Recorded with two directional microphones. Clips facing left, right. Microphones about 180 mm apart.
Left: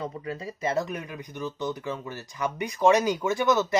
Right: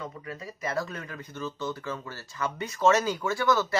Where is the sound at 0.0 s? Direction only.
30° left (ahead or behind).